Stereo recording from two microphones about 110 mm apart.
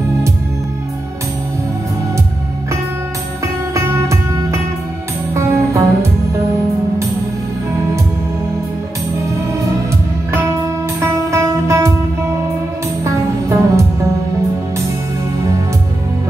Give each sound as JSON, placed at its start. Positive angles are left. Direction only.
{"t": 3.7, "sound": "music", "side_deg": -25}
{"t": 11.0, "sound": "music", "side_deg": -25}
{"t": 13.0, "sound": "music", "side_deg": -25}